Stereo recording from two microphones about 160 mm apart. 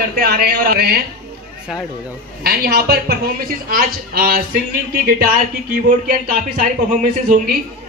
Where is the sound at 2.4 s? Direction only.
85° right; by 7.4 s 55° right (ahead or behind).